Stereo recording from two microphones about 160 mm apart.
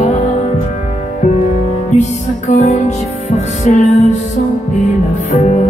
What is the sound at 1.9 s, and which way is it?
Music, 45° left (ahead or behind).